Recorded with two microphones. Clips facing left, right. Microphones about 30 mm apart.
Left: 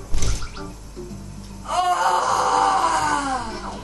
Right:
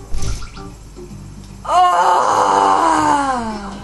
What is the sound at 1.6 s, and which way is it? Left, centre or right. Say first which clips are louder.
Wail: right 8 dB; right.